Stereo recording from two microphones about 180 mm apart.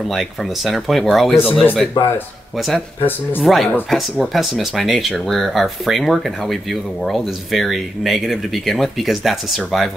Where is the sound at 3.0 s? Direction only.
10° left (ahead or behind).